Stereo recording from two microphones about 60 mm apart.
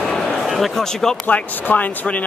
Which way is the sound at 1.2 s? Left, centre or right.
Left.